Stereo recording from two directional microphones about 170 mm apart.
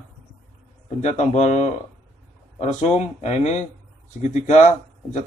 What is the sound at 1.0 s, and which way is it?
Speech, 40° left (ahead or behind).